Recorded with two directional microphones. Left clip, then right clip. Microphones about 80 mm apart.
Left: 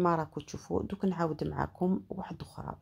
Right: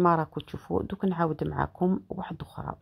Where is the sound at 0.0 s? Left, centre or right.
Right.